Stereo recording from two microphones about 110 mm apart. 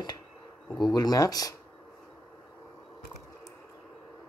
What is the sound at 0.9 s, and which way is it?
Speech, 35° left (ahead or behind).